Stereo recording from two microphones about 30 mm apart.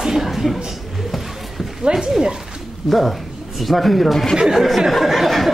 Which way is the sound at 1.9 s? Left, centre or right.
Centre.